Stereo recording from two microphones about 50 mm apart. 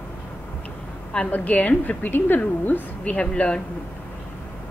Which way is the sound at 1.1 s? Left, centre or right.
Left.